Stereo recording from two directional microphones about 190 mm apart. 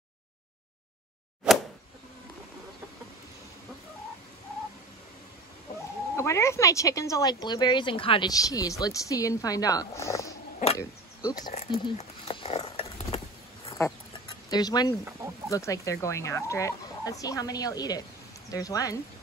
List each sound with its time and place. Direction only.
6.1 s speech: 15° left (ahead or behind)
11.5 s a sound: 30° left (ahead or behind)
13.7 s chicken: 15° left (ahead or behind)
14.5 s speech: 20° left (ahead or behind)